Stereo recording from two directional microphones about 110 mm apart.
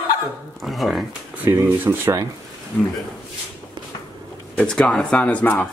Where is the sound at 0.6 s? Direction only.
Centre (ahead or behind).